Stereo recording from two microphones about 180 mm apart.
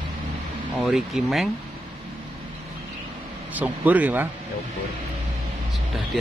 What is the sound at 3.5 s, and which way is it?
Speech, 10° right (ahead or behind).